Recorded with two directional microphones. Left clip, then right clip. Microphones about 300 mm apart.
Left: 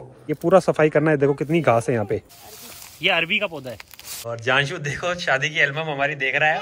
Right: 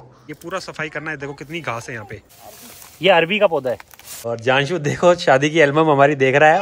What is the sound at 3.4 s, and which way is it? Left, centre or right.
Speech, right.